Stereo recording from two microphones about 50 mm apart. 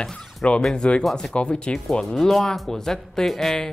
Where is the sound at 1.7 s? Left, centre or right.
Centre.